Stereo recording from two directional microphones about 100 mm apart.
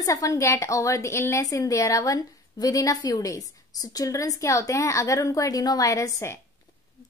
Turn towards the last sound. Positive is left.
turn(degrees=30)  # may be behind; listen again after turning